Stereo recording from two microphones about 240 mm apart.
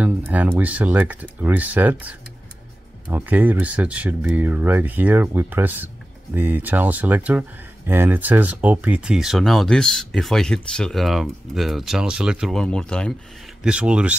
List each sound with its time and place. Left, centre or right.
0.0 s speech: centre